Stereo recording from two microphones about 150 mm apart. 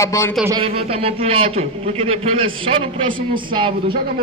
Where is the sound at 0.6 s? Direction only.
40° right (ahead or behind).